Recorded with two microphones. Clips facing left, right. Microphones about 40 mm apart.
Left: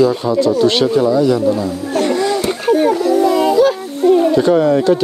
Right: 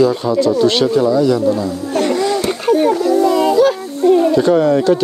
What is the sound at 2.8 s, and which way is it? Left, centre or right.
Children playing, left.